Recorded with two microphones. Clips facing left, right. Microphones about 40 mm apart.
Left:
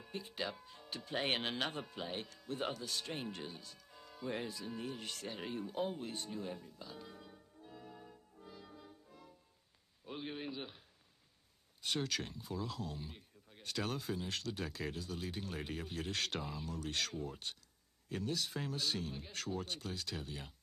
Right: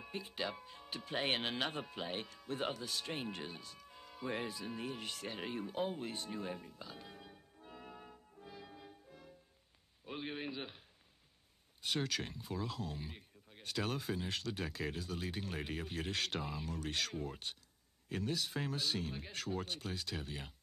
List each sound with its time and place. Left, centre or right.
0.0 s speech: centre
6.9 s organ: right
8.4 s music: right
10.0 s speech: right
11.8 s speech: centre
13.1 s a sound: centre
13.7 s speech: centre